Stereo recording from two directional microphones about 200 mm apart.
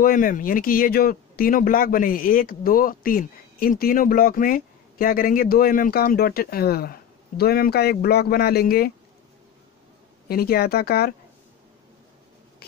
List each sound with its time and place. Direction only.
0.0 s speech: 45° left (ahead or behind)
10.2 s speech: 50° left (ahead or behind)